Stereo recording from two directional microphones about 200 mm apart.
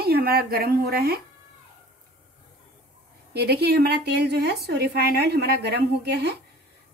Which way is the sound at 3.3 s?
55° right (ahead or behind).